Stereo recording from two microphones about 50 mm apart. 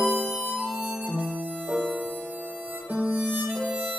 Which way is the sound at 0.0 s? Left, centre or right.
Centre.